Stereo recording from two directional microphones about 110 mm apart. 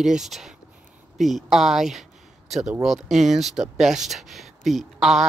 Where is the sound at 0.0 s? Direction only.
5° right (ahead or behind).